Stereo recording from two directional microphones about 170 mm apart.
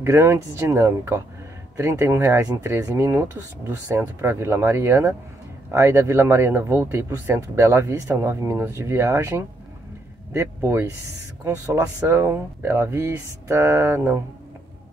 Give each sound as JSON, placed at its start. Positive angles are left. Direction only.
{"t": 0.0, "sound": "speech", "side_deg": -15}